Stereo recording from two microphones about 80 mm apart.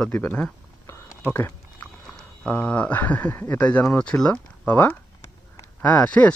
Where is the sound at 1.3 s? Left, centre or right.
Left.